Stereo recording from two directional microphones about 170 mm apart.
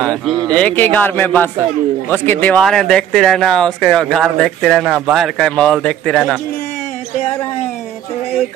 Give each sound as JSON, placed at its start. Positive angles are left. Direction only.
{"t": 0.0, "sound": "a man's voice", "side_deg": 5}